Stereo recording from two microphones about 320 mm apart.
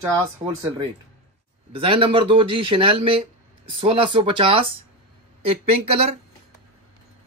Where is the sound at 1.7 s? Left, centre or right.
Centre.